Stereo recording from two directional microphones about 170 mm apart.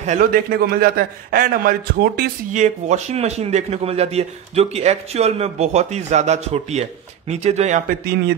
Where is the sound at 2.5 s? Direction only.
45° right (ahead or behind).